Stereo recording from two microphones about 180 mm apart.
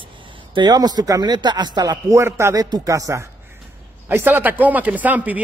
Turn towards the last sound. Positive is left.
turn(degrees=-10)  # may be behind; listen again after turning